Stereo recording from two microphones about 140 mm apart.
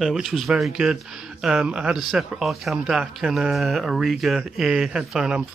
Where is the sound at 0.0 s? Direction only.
Centre (ahead or behind).